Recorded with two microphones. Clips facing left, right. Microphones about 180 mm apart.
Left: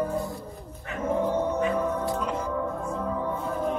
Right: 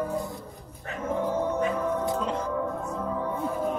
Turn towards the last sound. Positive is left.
turn(degrees=0)  # may be behind; listen again after turning